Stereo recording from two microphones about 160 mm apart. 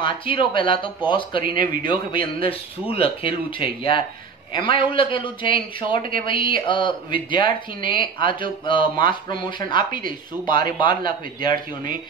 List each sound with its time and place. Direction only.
0.0 s speech: 30° left (ahead or behind)